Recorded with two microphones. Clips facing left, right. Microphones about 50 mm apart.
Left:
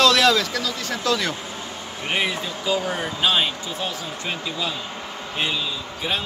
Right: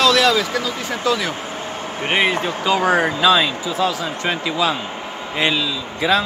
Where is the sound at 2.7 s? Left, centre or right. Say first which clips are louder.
Right 8 dB; right.